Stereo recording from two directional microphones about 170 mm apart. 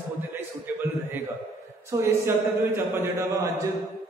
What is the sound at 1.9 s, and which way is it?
Speech, 15° right (ahead or behind).